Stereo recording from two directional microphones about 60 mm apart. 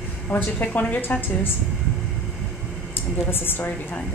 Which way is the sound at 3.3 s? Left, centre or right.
Left.